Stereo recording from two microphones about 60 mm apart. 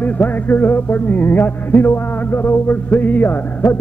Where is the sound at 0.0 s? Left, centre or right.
Left.